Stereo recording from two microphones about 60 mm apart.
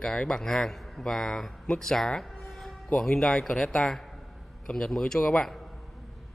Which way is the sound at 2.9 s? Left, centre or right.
Centre.